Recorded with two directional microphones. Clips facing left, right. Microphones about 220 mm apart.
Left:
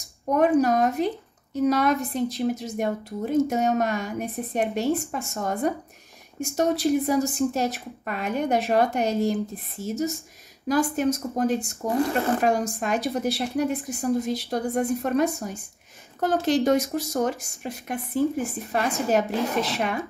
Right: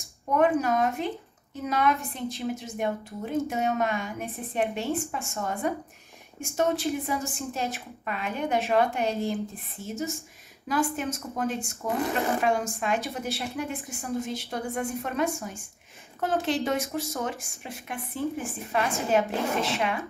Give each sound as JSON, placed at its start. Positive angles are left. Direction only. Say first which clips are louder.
{"t": 0.3, "sound": "speech", "louder": "left 4 dB", "side_deg": 40}